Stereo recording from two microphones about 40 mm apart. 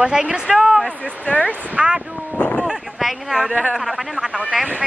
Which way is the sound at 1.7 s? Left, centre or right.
Right.